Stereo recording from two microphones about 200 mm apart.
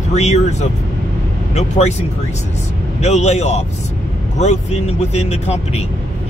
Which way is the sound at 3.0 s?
35° left (ahead or behind).